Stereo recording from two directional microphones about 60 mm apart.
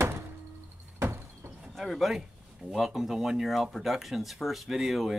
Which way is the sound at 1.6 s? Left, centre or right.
Centre.